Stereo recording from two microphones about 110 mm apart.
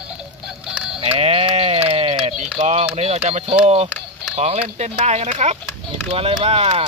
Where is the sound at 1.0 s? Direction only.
60° right (ahead or behind).